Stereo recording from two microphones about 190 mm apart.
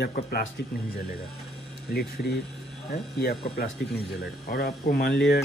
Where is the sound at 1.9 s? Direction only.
55° left (ahead or behind).